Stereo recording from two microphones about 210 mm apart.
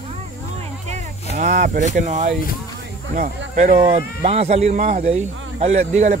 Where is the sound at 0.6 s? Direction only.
35° right (ahead or behind).